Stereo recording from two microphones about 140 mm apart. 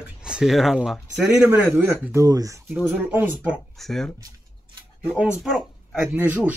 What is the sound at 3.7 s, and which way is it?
Speech, 5° left (ahead or behind).